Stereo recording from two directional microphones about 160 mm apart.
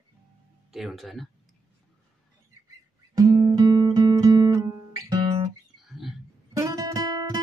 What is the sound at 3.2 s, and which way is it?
Guitar, 25° right (ahead or behind).